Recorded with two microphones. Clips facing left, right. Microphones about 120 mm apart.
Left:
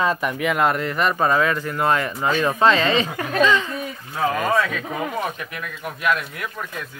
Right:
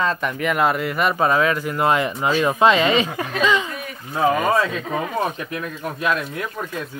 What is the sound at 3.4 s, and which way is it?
Speech, 15° right (ahead or behind).